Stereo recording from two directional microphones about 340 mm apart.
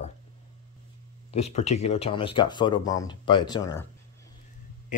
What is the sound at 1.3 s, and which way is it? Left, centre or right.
Speech, centre.